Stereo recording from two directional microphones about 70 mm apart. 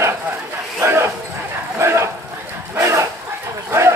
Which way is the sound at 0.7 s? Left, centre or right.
Right.